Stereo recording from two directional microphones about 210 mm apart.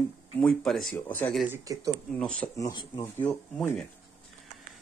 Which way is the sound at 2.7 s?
20° left (ahead or behind).